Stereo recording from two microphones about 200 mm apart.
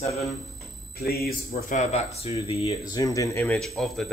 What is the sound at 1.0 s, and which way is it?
Speech, 50° left (ahead or behind).